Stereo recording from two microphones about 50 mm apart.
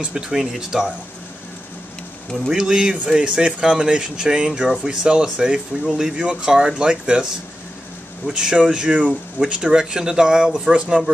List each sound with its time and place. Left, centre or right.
0.0 s speech: centre
2.5 s speech: centre
8.4 s speech: centre